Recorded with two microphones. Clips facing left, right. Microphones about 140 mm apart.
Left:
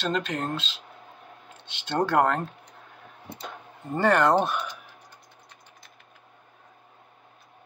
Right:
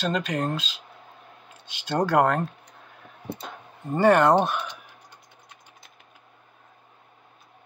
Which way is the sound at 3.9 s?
15° right (ahead or behind).